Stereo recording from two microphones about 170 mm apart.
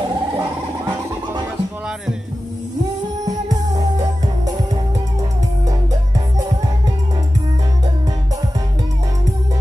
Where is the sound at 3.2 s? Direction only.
20° right (ahead or behind).